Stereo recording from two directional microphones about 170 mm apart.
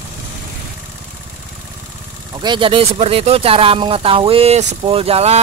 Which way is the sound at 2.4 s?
30° right (ahead or behind).